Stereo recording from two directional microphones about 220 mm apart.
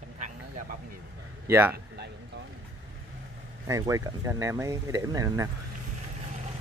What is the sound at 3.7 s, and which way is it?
Speech, 15° right (ahead or behind).